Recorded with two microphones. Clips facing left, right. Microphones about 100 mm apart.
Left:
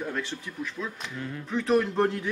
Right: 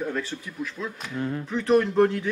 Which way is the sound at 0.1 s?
Centre (ahead or behind).